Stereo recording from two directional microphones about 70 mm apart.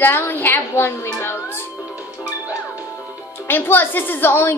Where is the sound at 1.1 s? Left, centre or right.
Left.